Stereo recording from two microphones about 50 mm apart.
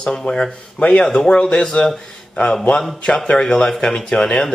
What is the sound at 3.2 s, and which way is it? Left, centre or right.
Speech, centre.